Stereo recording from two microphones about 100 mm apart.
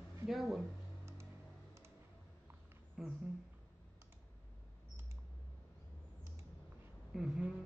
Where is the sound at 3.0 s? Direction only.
Centre (ahead or behind).